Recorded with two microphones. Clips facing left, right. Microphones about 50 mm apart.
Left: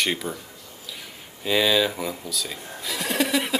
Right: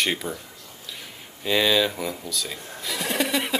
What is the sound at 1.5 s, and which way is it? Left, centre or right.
Speech, centre.